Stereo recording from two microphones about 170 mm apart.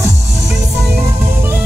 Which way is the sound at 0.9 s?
15° right (ahead or behind).